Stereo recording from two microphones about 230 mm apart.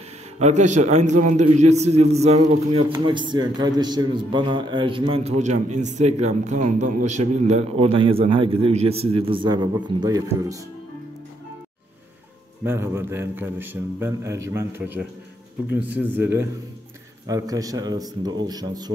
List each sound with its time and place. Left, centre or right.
0.4 s a man's voice: right
12.6 s a man's voice: centre